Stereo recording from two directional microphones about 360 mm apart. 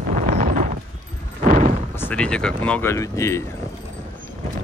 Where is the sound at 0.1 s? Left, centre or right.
Right.